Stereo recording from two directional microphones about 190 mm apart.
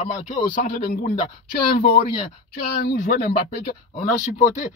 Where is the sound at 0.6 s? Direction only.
50° left (ahead or behind).